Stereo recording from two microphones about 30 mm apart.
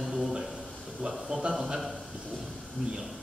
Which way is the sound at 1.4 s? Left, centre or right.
Right.